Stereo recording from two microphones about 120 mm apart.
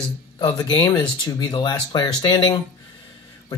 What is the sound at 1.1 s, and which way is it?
Speech, 40° left (ahead or behind).